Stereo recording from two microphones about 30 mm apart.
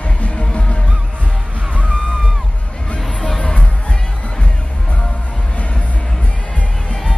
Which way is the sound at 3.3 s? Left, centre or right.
Left.